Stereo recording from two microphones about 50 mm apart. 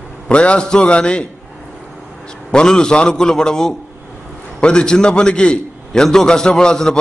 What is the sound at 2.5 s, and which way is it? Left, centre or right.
A man's voice, centre.